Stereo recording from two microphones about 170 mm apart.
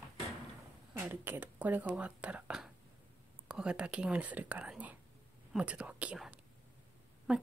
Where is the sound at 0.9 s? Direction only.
10° right (ahead or behind).